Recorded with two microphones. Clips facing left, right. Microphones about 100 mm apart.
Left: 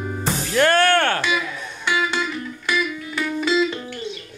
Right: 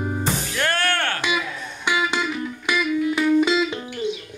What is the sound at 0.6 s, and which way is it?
Music, 55° left (ahead or behind).